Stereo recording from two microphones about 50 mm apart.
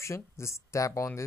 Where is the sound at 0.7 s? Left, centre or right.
Left.